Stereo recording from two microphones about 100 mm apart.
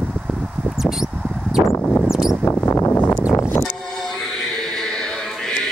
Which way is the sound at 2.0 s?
5° right (ahead or behind).